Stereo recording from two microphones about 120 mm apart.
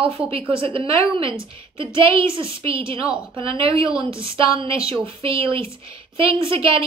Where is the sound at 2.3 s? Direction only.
50° right (ahead or behind).